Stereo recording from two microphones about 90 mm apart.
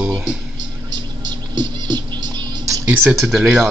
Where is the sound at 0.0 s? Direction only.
5° right (ahead or behind).